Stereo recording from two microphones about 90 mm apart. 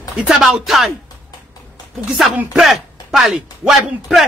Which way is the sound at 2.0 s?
Centre (ahead or behind).